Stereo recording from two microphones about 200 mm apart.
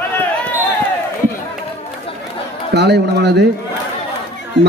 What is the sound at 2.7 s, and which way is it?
Speech, 55° right (ahead or behind).